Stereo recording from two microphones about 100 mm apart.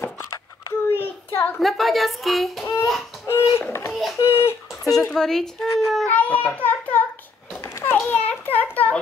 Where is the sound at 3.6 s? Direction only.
25° left (ahead or behind).